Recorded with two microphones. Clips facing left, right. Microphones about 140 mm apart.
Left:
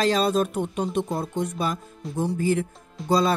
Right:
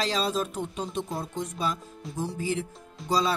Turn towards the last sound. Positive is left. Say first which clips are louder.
# left 5 dB
turn(degrees=55)  # may be behind; listen again after turning